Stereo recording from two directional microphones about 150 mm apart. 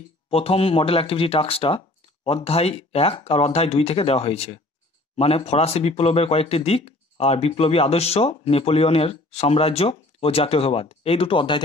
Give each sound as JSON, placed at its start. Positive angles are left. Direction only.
{"t": 0.3, "sound": "speech", "side_deg": 40}